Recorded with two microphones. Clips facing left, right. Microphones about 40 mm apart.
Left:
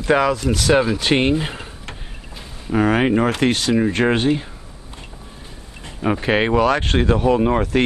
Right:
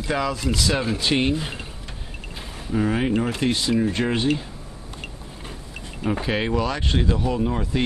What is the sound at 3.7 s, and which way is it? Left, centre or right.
Speech, left.